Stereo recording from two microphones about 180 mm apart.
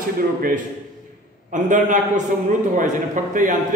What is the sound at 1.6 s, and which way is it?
A man's voice, 45° right (ahead or behind).